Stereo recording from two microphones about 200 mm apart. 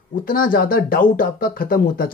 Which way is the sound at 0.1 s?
45° left (ahead or behind).